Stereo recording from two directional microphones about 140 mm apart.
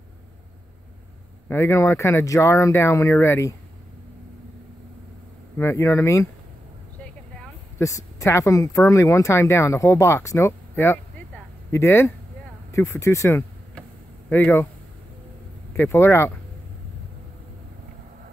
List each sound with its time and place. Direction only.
1.5 s speech: 20° left (ahead or behind)
5.6 s speech: 20° left (ahead or behind)
7.8 s speech: 20° left (ahead or behind)
15.7 s speech: 15° left (ahead or behind)